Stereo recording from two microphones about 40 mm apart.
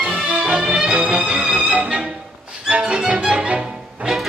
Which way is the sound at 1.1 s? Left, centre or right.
Right.